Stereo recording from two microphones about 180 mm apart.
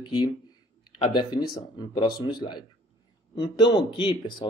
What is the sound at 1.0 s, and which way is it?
Speech, 25° left (ahead or behind).